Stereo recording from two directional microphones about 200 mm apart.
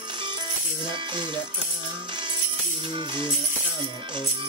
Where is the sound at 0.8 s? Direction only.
20° right (ahead or behind).